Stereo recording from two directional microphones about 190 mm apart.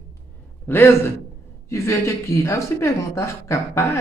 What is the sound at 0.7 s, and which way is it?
Speech, 10° left (ahead or behind).